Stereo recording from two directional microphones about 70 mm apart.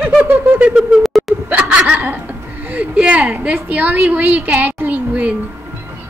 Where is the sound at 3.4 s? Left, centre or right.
Right.